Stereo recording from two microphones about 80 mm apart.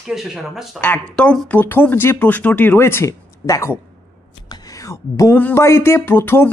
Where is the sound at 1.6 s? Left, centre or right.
Left.